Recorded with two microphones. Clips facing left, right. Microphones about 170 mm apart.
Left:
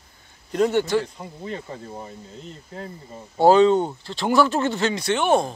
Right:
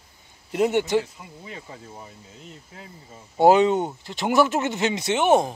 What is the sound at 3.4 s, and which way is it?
Speech, 20° right (ahead or behind).